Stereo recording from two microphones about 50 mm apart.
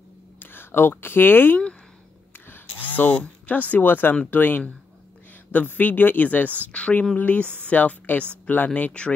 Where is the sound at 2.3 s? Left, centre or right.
Left.